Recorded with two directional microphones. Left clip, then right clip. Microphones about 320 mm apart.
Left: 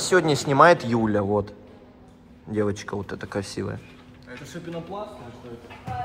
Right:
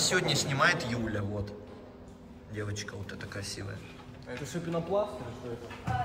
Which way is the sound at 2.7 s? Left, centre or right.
Centre.